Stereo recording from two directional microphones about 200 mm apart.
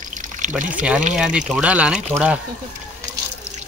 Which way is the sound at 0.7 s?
5° right (ahead or behind).